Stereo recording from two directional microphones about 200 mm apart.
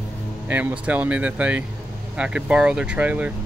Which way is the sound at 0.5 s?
10° right (ahead or behind).